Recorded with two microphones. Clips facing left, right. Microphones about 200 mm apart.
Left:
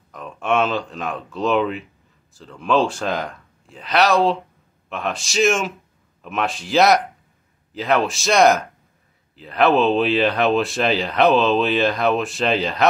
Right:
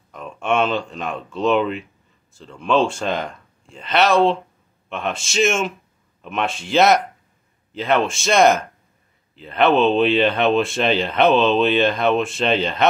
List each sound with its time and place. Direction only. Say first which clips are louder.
0.1 s speech: even; centre (ahead or behind)